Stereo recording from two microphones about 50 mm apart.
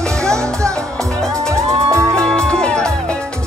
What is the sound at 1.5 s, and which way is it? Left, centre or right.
Music, right.